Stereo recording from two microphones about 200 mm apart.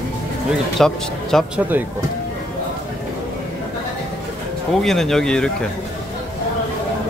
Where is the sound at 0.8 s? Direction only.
Centre (ahead or behind).